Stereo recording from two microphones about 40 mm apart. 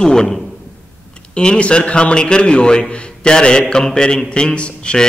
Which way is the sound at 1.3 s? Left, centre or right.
Left.